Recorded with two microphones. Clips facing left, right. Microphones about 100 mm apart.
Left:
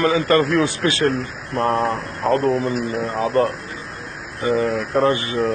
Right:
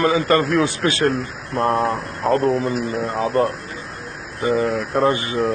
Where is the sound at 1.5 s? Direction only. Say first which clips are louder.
Even; 25° right (ahead or behind).